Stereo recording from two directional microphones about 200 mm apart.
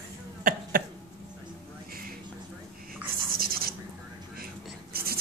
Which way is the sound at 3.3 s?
50° right (ahead or behind).